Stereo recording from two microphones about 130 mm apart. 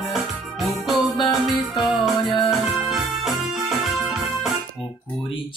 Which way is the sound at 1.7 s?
Centre (ahead or behind).